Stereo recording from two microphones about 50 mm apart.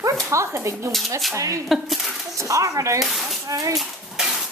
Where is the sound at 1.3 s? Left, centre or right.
Right.